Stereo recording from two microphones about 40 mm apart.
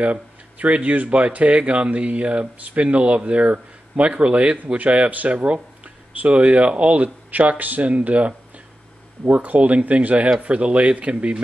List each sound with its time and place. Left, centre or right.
0.0 s speech: right
7.2 s speech: right
9.3 s speech: right